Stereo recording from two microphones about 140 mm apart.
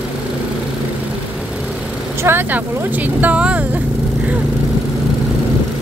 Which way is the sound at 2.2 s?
15° right (ahead or behind).